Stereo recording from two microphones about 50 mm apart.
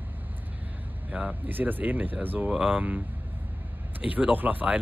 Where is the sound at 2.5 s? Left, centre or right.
Centre.